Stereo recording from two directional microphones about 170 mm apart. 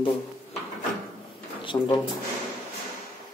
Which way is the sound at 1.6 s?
30° left (ahead or behind).